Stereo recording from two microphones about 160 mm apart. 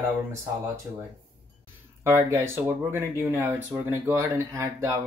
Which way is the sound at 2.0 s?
15° right (ahead or behind).